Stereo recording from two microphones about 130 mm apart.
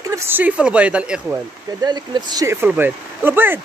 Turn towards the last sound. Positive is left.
turn(degrees=-15)  # may be behind; listen again after turning